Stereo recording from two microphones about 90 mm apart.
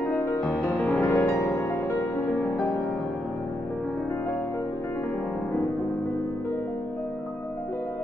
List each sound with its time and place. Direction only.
0.4 s music: 5° left (ahead or behind)